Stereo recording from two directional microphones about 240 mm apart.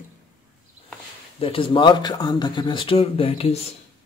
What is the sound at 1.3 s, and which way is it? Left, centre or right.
Speech, left.